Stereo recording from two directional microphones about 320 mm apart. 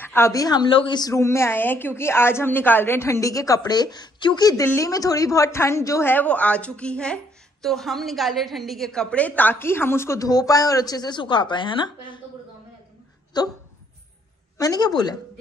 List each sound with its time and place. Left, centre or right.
0.0 s a woman's voice: centre
13.4 s a woman's voice: centre
14.6 s a woman's voice: centre